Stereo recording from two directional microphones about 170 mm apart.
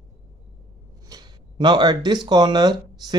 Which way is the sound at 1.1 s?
25° right (ahead or behind).